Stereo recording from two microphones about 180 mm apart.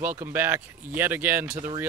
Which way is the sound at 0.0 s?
10° right (ahead or behind).